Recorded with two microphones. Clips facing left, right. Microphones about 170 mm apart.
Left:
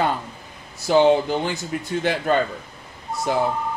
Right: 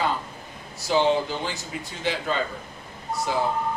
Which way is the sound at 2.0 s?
55° left (ahead or behind).